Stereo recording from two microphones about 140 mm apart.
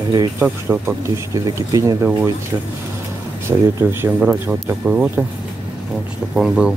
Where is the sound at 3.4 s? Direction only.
15° right (ahead or behind).